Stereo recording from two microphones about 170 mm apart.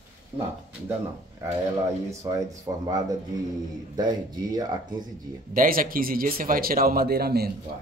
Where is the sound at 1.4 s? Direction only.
15° right (ahead or behind).